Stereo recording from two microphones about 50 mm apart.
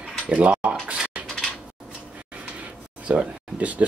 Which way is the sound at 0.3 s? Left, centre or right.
Right.